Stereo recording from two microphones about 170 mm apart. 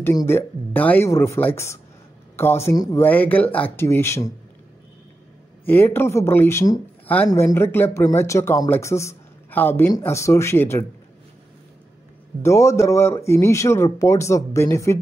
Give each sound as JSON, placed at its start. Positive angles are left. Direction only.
{"t": 0.0, "sound": "speech", "side_deg": 15}
{"t": 5.7, "sound": "speech", "side_deg": 10}
{"t": 12.4, "sound": "speech", "side_deg": 15}